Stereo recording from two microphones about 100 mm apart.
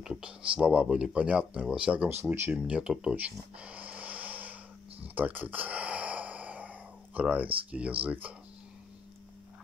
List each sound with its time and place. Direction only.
0.0 s speech: 5° right (ahead or behind); by 2.5 s 20° right (ahead or behind)
2.5 s speech: 10° right (ahead or behind)
5.0 s sigh: 15° right (ahead or behind)
7.7 s speech: 15° right (ahead or behind)